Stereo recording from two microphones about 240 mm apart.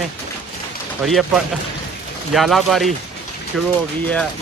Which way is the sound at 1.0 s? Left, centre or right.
Centre.